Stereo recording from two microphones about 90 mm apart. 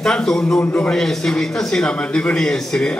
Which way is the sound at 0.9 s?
5° left (ahead or behind).